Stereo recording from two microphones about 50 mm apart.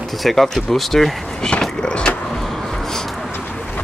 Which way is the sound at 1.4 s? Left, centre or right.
Centre.